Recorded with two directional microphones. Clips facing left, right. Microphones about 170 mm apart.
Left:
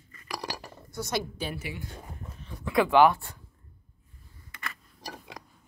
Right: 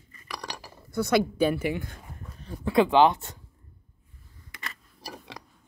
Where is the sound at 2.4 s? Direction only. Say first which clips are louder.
Right 6 dB; 35° right (ahead or behind).